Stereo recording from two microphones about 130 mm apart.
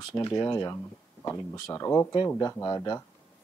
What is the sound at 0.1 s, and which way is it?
Speech, 25° left (ahead or behind).